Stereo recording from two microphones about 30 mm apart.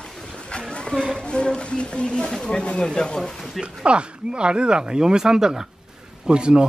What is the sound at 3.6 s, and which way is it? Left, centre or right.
Speech, right.